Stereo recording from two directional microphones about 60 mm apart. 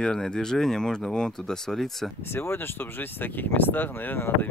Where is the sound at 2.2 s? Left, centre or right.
Left.